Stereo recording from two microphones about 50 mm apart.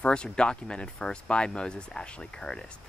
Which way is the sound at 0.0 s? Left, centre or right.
Centre.